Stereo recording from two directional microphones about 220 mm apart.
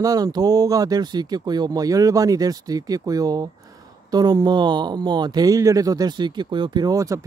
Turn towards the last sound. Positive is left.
turn(degrees=-15)  # may be behind; listen again after turning